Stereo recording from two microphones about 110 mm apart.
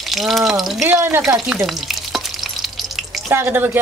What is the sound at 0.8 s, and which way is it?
Speech, 20° right (ahead or behind).